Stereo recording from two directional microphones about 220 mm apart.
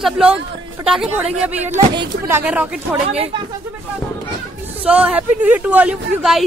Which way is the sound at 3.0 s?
25° right (ahead or behind).